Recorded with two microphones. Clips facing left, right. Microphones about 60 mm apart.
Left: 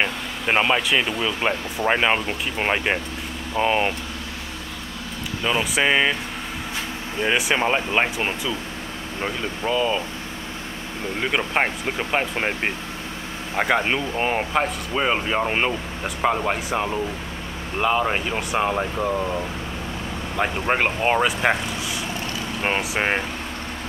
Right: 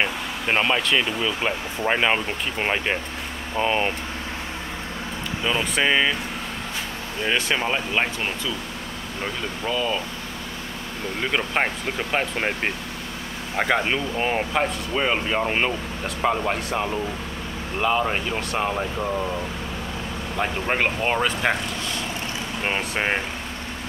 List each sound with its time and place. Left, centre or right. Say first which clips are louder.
0.0 s speech: left 1 dB; centre
5.4 s speech: left 1 dB; centre
7.2 s speech: left 2 dB; centre
11.1 s speech: left 1 dB; centre
20.3 s speech: left 2 dB; centre
22.6 s speech: left 2 dB; centre